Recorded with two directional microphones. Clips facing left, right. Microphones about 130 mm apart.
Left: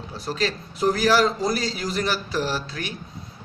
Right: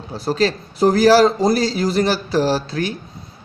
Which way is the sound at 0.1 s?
35° right (ahead or behind).